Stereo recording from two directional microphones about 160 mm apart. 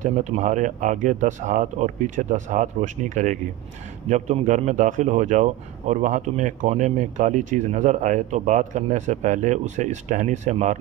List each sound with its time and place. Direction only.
0.0 s speech: 50° right (ahead or behind)